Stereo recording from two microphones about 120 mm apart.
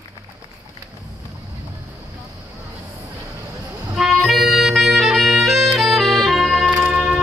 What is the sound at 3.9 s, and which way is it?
Music, centre (ahead or behind).